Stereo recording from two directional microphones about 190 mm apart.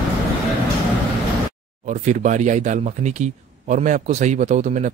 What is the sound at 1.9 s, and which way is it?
Speech, 40° right (ahead or behind).